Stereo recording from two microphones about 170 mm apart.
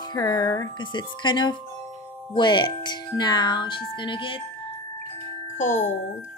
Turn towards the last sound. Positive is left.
turn(degrees=45)  # may be behind; listen again after turning